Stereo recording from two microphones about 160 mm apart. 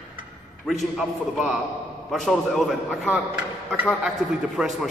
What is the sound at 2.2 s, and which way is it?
Speech, centre (ahead or behind).